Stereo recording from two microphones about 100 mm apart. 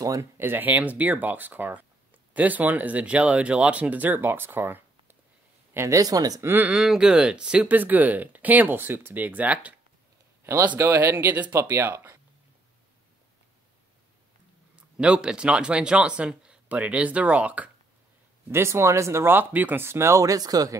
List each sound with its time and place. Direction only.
0.0 s speech: 35° right (ahead or behind)
0.4 s speech: 20° right (ahead or behind)
5.8 s speech: 30° right (ahead or behind)
6.4 s speech: 20° right (ahead or behind)
6.7 s speech: 5° right (ahead or behind)
10.4 s a man's voice: 25° right (ahead or behind)
15.0 s speech: 10° right (ahead or behind)
18.5 s speech: 25° right (ahead or behind)